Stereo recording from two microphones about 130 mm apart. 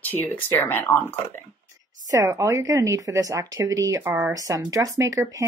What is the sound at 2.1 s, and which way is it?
Speech, 25° right (ahead or behind).